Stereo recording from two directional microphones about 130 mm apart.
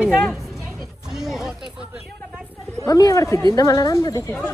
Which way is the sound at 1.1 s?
5° right (ahead or behind).